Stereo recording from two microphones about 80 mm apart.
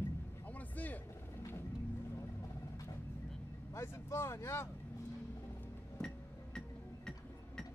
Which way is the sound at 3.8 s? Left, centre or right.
Left.